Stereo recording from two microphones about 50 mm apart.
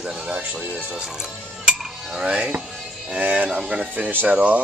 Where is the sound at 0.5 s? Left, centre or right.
Right.